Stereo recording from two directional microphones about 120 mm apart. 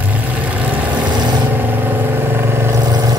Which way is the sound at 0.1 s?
10° right (ahead or behind).